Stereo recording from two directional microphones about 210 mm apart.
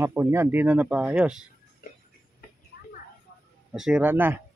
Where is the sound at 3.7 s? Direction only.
5° right (ahead or behind).